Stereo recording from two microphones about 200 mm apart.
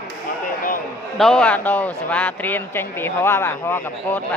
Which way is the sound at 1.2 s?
5° left (ahead or behind).